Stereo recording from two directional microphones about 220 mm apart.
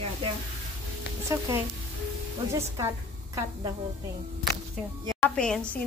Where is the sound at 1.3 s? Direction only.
15° right (ahead or behind).